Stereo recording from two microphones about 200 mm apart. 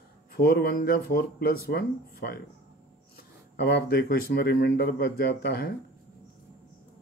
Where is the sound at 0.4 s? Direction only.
55° left (ahead or behind).